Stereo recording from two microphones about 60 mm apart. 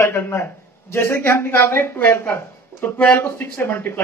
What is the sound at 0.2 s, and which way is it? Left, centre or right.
Speech, left.